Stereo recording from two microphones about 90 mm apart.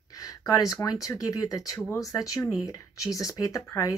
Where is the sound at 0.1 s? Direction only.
45° left (ahead or behind).